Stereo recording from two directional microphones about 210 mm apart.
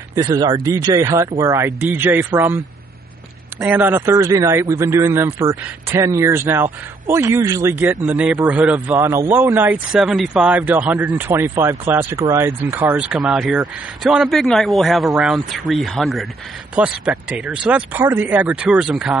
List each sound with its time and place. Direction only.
0.1 s speech: 15° right (ahead or behind)